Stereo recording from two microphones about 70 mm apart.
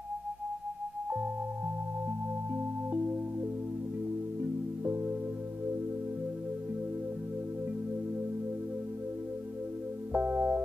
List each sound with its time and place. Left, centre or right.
2.5 s music: right
4.4 s music: right
10.1 s music: right